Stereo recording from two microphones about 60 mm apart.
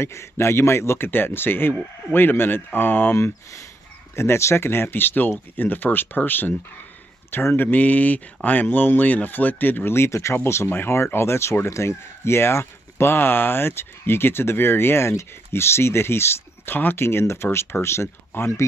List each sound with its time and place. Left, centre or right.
0.0 s speech: left
4.1 s speech: left